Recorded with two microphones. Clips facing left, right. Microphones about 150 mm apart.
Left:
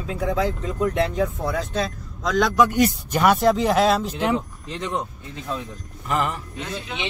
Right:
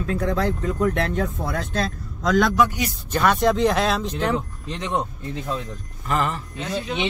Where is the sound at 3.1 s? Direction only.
10° left (ahead or behind).